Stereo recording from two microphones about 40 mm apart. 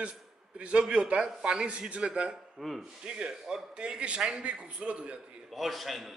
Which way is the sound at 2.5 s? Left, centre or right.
Centre.